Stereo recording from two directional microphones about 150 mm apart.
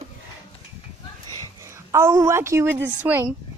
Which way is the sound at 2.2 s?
15° right (ahead or behind).